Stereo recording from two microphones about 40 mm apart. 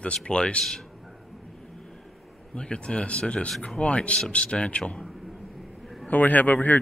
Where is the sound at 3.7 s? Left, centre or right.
Left.